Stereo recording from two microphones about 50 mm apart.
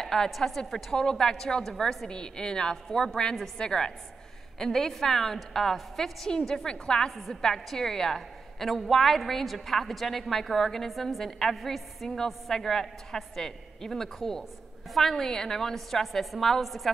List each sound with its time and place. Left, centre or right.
0.0 s a woman's voice: centre
7.1 s a woman's voice: centre